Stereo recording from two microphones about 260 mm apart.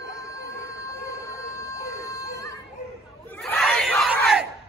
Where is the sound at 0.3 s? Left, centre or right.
Centre.